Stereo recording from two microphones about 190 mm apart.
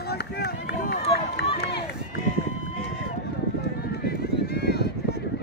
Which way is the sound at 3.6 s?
55° left (ahead or behind).